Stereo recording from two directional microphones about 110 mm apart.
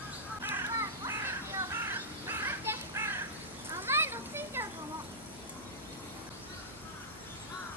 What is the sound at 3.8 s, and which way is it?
Children playing, 20° right (ahead or behind).